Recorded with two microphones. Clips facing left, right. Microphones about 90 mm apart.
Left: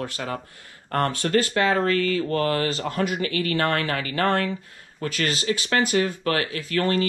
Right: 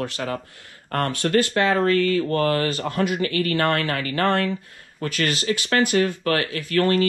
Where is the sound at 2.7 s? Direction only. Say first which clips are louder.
Right 1 dB; 20° left (ahead or behind).